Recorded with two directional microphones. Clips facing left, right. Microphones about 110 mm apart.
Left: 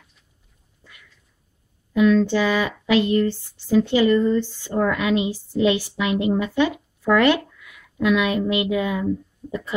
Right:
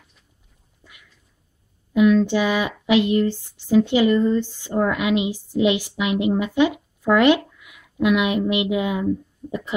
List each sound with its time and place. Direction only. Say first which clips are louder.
2.0 s speech: right 1 dB; 15° right (ahead or behind)